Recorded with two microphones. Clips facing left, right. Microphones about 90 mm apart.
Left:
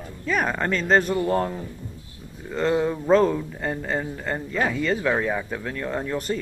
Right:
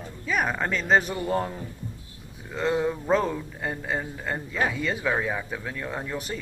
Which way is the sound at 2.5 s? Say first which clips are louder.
Left 3 dB; 5° right (ahead or behind).